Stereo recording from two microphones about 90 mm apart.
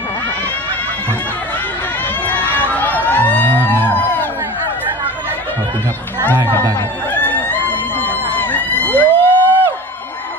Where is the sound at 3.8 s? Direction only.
20° left (ahead or behind).